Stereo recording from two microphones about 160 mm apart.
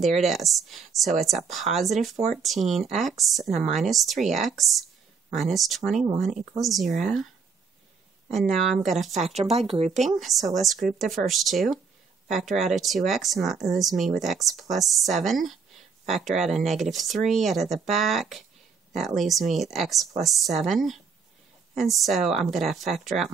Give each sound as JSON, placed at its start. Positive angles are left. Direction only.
{"t": 0.2, "sound": "a woman's voice", "side_deg": 0}
{"t": 8.3, "sound": "a woman's voice", "side_deg": 0}
{"t": 9.1, "sound": "speech", "side_deg": -45}
{"t": 10.5, "sound": "a woman's voice", "side_deg": 0}